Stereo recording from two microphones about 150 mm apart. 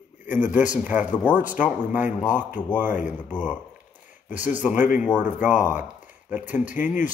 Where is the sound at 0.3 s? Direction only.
10° right (ahead or behind).